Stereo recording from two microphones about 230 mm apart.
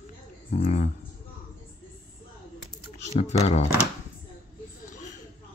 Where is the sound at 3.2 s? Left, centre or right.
Left.